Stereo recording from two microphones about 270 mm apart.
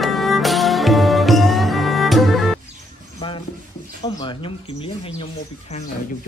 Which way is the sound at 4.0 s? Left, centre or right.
Centre.